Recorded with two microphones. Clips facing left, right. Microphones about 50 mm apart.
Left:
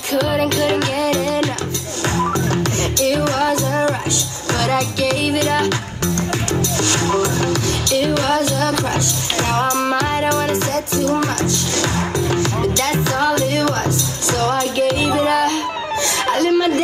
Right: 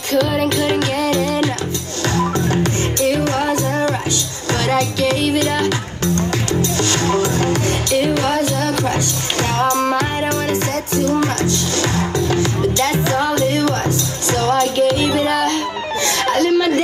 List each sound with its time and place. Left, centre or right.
0.1 s music: centre
2.1 s music: left
2.5 s music: right
6.6 s music: right
7.9 s music: centre
10.2 s music: left
11.1 s music: right
15.0 s music: left
15.3 s music: right
16.3 s a sound: centre